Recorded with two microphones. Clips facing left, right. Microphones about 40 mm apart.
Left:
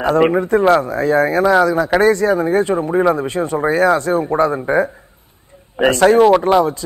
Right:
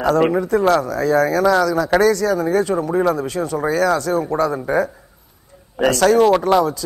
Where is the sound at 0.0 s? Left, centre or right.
Left.